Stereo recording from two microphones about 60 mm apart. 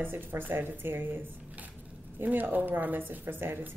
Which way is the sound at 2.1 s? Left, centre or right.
Right.